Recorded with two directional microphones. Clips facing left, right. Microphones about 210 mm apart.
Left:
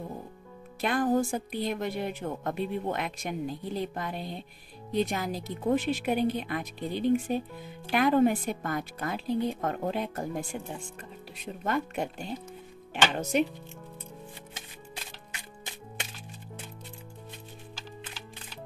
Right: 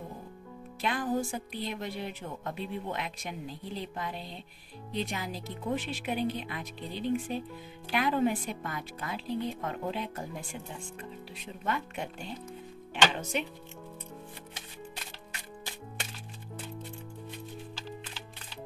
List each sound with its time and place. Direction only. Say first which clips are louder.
0.7 s speech: left 5 dB; 45° left (ahead or behind)
13.1 s speech: left 7 dB; 40° left (ahead or behind)